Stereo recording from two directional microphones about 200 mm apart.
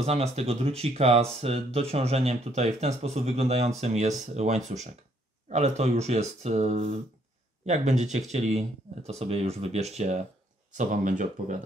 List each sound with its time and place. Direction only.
0.0 s speech: 30° right (ahead or behind)